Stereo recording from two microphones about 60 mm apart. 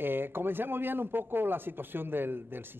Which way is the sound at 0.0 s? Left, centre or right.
Right.